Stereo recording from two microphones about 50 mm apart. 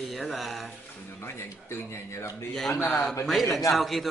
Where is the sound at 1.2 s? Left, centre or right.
Left.